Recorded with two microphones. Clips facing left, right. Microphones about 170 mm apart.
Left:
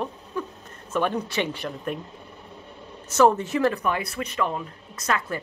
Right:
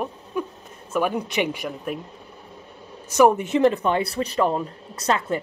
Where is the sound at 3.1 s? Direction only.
15° right (ahead or behind).